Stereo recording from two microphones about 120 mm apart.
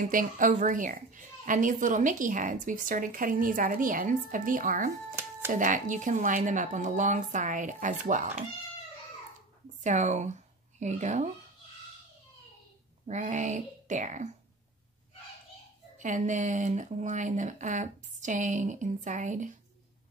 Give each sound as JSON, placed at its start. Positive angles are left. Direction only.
{"t": 0.0, "sound": "speech", "side_deg": -90}
{"t": 9.8, "sound": "speech", "side_deg": -90}
{"t": 10.8, "sound": "speech", "side_deg": -80}
{"t": 13.0, "sound": "speech", "side_deg": -85}
{"t": 16.0, "sound": "speech", "side_deg": -90}